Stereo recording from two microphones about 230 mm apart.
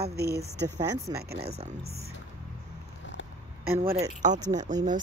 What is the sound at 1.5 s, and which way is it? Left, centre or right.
Speech, right.